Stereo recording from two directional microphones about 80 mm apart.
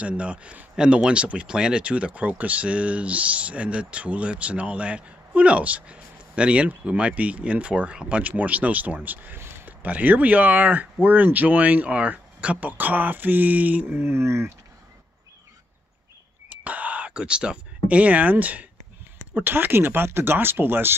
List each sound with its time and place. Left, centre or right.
0.0 s speech: centre; by 14.5 s right
16.4 s a sound: centre
19.3 s speech: right